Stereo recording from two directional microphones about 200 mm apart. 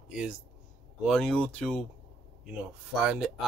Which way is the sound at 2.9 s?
5° right (ahead or behind).